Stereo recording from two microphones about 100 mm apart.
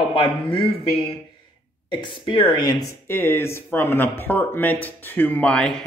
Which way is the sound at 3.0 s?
20° left (ahead or behind).